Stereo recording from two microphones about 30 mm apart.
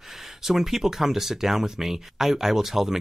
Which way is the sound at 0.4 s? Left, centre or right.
Centre.